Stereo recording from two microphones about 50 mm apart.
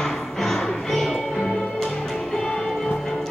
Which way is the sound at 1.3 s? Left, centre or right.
Centre.